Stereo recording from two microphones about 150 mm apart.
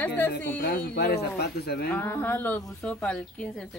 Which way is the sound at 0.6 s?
90° left.